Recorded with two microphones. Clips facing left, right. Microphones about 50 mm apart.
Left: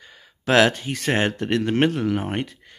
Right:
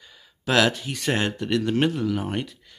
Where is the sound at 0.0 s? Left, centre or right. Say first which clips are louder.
Left 2 dB; left.